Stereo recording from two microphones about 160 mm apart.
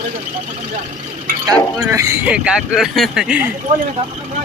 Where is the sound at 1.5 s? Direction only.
20° right (ahead or behind).